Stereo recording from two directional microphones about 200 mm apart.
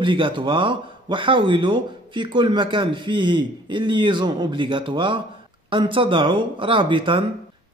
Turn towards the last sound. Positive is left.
turn(degrees=-25)  # may be behind; listen again after turning